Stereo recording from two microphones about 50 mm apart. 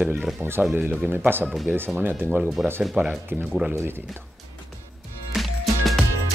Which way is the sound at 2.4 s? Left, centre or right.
Centre.